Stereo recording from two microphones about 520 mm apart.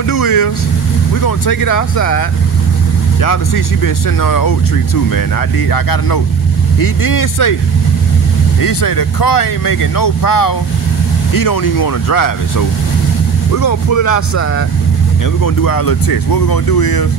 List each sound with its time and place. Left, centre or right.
0.1 s speech: left
5.7 s speech: left
8.5 s speech: left
15.4 s speech: left